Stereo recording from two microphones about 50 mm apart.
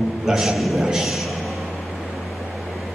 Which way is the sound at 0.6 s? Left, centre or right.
Centre.